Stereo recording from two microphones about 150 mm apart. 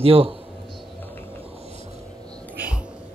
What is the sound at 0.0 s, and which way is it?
Speech, 40° right (ahead or behind).